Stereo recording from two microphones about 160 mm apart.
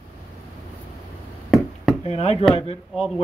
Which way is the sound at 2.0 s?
40° left (ahead or behind).